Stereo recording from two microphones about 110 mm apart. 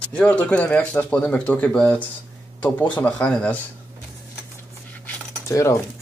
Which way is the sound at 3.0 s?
10° left (ahead or behind).